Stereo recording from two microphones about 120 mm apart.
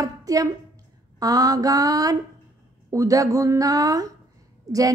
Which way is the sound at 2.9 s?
30° right (ahead or behind).